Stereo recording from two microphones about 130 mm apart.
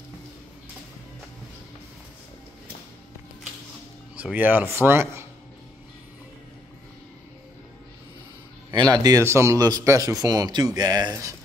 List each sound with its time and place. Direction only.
4.2 s speech: 10° right (ahead or behind)
8.7 s speech: 30° right (ahead or behind)